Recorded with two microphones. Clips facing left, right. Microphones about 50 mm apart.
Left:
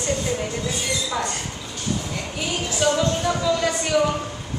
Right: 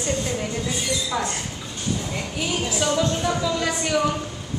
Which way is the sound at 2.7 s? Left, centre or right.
Centre.